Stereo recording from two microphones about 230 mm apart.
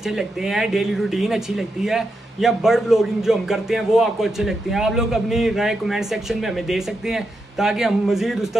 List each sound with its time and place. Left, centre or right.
0.0 s speech: centre